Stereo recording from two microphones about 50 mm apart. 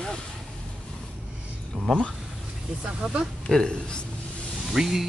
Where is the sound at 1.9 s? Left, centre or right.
Centre.